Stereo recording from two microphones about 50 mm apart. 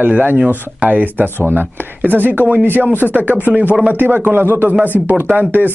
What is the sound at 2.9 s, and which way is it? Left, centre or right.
Speech, left.